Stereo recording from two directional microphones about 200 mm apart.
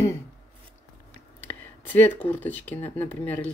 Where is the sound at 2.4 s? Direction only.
10° left (ahead or behind).